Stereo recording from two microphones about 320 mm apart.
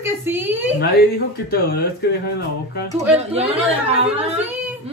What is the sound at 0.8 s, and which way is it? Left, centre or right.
Speech, left.